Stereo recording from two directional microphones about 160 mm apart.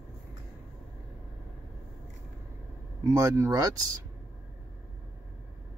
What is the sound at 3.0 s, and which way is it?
Speech, 20° right (ahead or behind).